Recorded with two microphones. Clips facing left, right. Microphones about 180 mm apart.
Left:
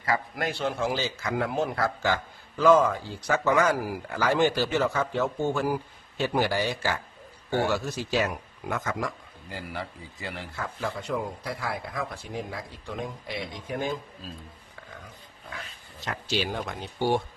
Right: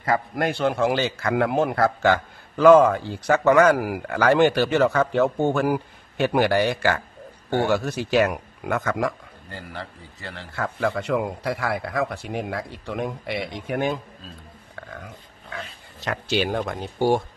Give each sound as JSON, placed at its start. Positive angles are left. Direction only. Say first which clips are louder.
{"t": 0.0, "sound": "a man's voice", "louder": "right 5 dB", "side_deg": -50}
{"t": 9.5, "sound": "a man's voice", "louder": "even", "side_deg": 5}
{"t": 10.5, "sound": "a man's voice", "louder": "right 10 dB", "side_deg": -65}
{"t": 16.0, "sound": "speech", "louder": "right 6 dB", "side_deg": -65}